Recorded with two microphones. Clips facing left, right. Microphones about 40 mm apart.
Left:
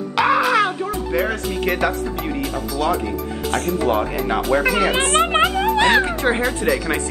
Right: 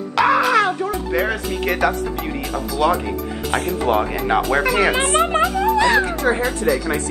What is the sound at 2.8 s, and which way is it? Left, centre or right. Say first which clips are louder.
Speech: right 3 dB; right.